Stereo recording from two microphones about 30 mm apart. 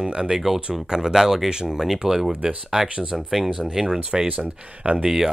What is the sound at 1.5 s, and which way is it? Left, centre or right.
Speech, right.